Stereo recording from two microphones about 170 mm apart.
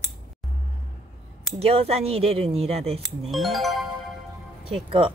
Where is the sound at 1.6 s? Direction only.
35° right (ahead or behind).